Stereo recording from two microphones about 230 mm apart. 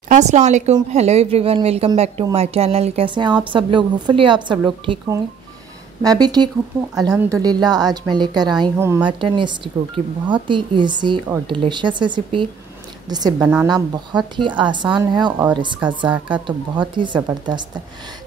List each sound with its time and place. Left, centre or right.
0.1 s a woman's voice: right
13.4 s a woman's voice: centre
13.7 s speech: centre